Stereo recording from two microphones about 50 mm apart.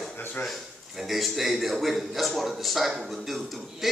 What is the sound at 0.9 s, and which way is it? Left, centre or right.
A man's voice, centre.